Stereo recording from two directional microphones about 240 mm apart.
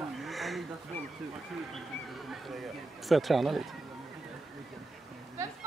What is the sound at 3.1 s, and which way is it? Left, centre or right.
Speech, centre.